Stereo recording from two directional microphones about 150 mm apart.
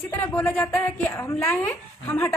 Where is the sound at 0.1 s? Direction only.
15° left (ahead or behind).